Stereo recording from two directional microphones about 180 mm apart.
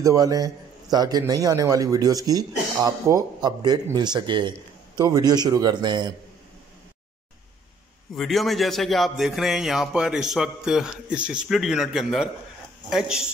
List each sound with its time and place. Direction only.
0.0 s a man's voice: 20° right (ahead or behind)
8.2 s a man's voice: centre (ahead or behind)